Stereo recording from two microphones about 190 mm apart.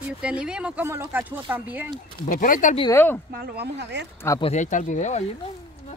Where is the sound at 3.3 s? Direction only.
60° right (ahead or behind).